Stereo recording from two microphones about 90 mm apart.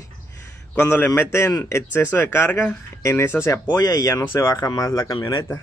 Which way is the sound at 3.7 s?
45° left (ahead or behind).